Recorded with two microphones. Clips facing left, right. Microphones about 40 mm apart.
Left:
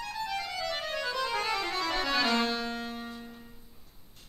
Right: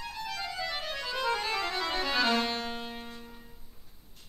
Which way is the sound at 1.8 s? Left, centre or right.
Centre.